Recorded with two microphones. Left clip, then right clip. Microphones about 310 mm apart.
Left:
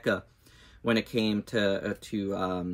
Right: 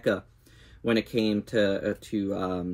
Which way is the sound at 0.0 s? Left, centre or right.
Centre.